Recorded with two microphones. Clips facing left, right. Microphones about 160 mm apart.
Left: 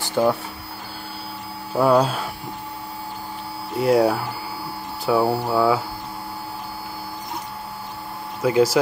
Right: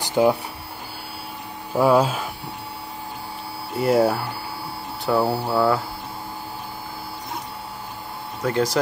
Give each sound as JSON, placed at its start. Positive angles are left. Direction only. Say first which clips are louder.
{"t": 0.0, "sound": "printer", "louder": "right 1 dB", "side_deg": -15}
{"t": 1.8, "sound": "speech", "louder": "even", "side_deg": -5}
{"t": 3.7, "sound": "speech", "louder": "left 1 dB", "side_deg": 0}
{"t": 8.4, "sound": "speech", "louder": "left 5 dB", "side_deg": 10}